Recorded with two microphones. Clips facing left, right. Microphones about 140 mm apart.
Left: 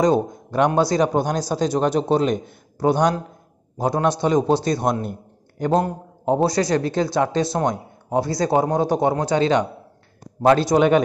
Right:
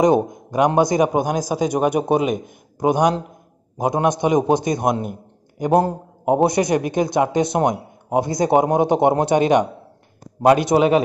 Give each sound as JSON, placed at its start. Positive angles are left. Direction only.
{"t": 0.0, "sound": "a man's voice", "side_deg": -15}